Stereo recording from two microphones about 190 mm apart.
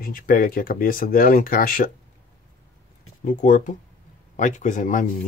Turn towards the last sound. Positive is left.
turn(degrees=40)  # may be behind; listen again after turning